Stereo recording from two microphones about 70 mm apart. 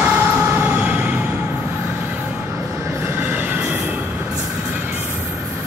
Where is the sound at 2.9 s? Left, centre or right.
Right.